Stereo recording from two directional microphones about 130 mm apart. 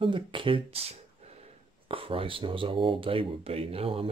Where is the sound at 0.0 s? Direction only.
40° right (ahead or behind).